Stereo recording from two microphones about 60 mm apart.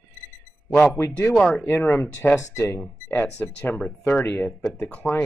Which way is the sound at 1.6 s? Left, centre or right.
Left.